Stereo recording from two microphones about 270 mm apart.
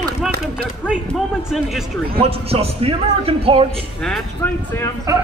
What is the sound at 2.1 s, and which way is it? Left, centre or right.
A man's voice, right.